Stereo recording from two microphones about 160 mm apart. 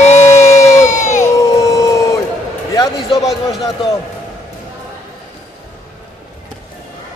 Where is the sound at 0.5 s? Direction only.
20° left (ahead or behind).